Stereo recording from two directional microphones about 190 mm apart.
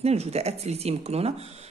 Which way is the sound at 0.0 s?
35° right (ahead or behind).